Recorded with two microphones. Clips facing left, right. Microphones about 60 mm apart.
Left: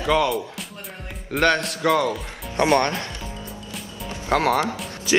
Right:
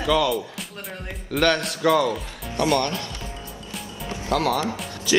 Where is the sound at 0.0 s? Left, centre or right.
Left.